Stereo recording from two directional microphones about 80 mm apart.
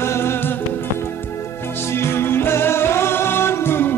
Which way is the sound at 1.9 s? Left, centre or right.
Left.